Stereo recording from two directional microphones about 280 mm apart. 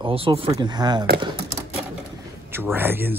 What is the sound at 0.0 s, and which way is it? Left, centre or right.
Speech, centre.